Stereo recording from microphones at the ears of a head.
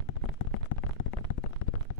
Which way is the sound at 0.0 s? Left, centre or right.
Left.